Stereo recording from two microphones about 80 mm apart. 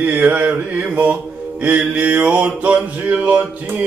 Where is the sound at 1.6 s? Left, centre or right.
Centre.